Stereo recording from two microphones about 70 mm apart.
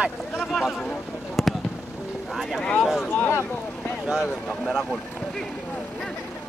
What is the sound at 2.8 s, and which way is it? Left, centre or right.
Speech, centre.